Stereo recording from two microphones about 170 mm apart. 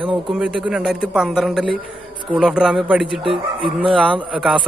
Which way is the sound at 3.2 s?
30° right (ahead or behind).